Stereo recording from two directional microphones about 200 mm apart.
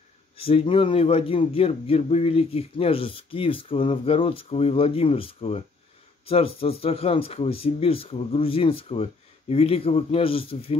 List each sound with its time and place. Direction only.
0.4 s a man's voice: 30° left (ahead or behind)